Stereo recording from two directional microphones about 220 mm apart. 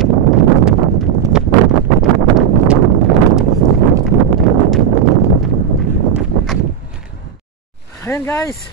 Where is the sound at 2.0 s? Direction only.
5° right (ahead or behind).